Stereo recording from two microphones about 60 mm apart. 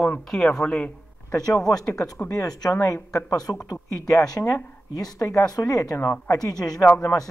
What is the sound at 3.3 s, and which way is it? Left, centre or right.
Speech, left.